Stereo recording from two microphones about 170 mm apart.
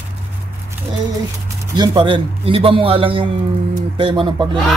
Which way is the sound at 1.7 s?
25° right (ahead or behind).